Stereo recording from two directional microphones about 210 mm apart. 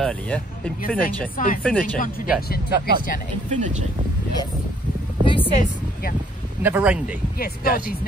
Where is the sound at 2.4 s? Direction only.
45° left (ahead or behind).